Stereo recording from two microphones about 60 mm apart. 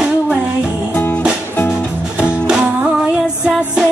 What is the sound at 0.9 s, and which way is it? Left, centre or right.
Music, left.